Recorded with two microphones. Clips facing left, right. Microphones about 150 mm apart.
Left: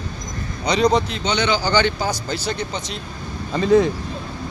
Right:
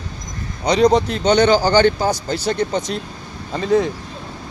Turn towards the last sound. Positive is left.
turn(degrees=-45)  # may be behind; listen again after turning